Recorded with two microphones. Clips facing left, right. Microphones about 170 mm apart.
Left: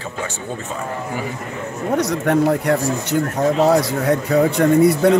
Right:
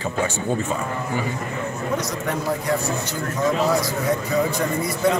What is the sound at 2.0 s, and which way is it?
Speech, 65° left (ahead or behind).